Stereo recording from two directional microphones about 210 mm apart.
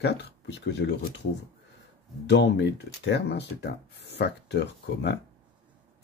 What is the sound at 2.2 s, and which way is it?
Speech, 55° left (ahead or behind).